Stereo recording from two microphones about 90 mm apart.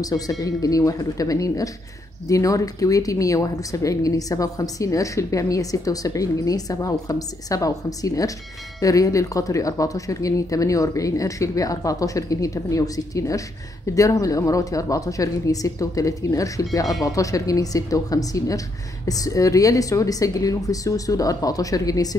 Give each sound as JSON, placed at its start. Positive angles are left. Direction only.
{"t": 0.0, "sound": "a woman's voice", "side_deg": 40}